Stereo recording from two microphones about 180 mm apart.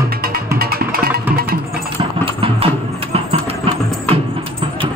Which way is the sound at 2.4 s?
30° right (ahead or behind).